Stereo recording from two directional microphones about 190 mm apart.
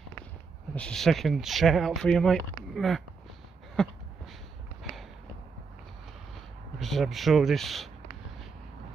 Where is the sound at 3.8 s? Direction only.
Centre (ahead or behind).